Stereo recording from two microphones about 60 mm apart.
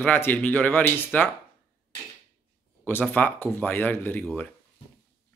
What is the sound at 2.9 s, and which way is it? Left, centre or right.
Speech, left.